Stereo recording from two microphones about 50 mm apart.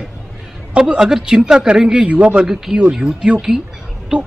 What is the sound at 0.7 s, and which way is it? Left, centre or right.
A man's voice, centre.